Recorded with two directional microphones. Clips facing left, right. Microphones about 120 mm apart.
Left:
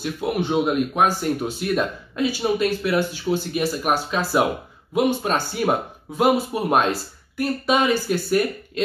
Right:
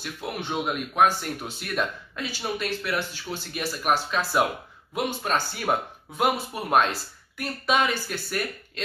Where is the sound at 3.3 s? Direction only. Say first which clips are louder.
Left 12 dB; 30° left (ahead or behind).